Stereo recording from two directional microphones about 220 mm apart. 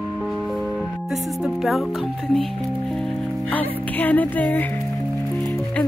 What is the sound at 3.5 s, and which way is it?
Music, 5° left (ahead or behind).